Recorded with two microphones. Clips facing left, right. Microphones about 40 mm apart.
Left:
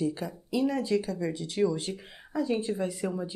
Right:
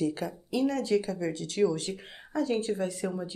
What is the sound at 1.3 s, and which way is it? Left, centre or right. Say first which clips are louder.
Speech: right 1 dB; centre.